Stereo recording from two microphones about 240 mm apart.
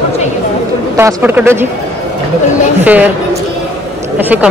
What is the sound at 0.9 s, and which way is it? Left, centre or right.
Speech, centre.